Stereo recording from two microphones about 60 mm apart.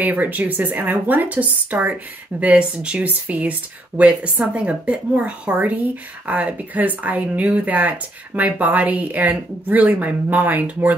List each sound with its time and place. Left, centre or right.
0.0 s speech: right